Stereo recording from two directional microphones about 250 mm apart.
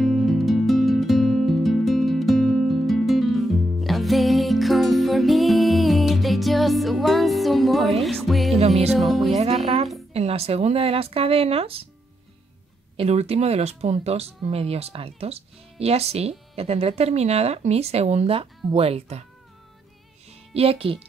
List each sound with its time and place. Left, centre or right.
0.0 s music: centre
8.9 s speech: centre
9.3 s speech: right
12.9 s speech: right
20.5 s speech: right